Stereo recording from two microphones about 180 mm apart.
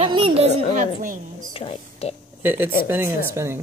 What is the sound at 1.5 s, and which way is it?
Speech, 30° left (ahead or behind).